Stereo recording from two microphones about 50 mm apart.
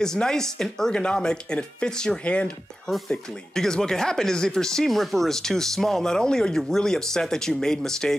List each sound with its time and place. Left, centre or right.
0.0 s speech: centre
3.1 s speech: centre